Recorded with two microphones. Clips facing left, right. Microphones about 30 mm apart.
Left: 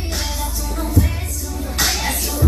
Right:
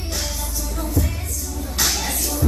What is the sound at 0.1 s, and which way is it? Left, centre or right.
Music, centre.